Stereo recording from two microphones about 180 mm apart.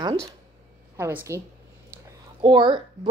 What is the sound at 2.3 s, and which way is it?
Speech, 25° right (ahead or behind).